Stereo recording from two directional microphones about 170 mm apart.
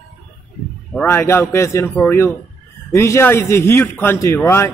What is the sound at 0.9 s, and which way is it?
Speech, 15° left (ahead or behind).